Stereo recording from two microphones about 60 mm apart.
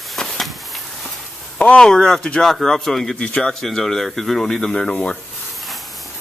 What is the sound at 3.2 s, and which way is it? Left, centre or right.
Speech, left.